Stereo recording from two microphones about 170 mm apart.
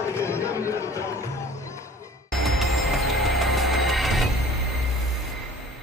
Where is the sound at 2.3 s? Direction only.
Centre (ahead or behind).